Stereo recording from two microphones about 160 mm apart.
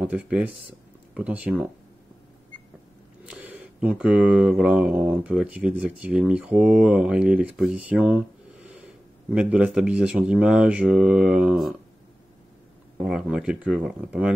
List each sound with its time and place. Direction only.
0.0 s speech: 10° right (ahead or behind)
3.3 s speech: 10° right (ahead or behind)
12.9 s speech: 5° right (ahead or behind)